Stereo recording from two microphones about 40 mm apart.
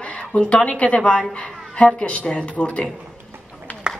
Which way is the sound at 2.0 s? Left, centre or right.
Left.